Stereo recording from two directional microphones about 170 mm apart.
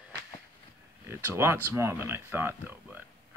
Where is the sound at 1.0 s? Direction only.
15° right (ahead or behind).